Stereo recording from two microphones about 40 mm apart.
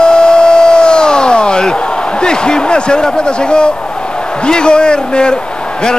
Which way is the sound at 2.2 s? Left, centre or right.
Left.